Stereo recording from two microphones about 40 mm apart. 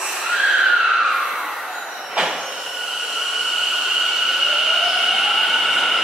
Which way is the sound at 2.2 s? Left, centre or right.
Centre.